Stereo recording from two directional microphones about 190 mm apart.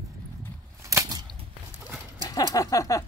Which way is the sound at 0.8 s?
20° right (ahead or behind).